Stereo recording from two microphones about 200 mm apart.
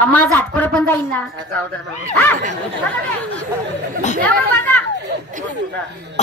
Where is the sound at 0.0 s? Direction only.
10° left (ahead or behind).